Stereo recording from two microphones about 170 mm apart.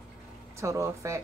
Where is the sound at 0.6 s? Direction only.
20° right (ahead or behind).